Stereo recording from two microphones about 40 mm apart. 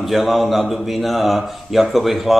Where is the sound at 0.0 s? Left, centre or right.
Centre.